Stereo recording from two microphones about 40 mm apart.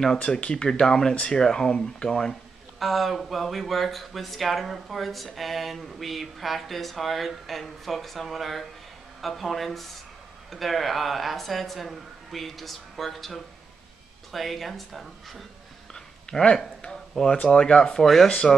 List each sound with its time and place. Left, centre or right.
0.2 s speech: left
2.8 s speech: centre
15.9 s a sound: centre
17.1 s speech: centre
17.9 s speech: centre